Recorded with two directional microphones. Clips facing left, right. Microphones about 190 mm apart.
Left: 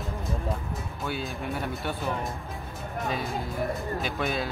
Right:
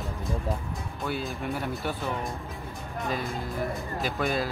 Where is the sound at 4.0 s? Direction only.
Centre (ahead or behind).